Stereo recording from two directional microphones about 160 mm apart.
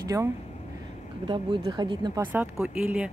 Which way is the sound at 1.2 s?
30° right (ahead or behind).